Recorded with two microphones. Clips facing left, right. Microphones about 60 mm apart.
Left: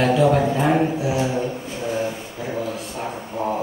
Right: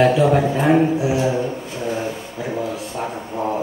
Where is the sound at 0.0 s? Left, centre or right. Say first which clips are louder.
Right 2 dB; centre.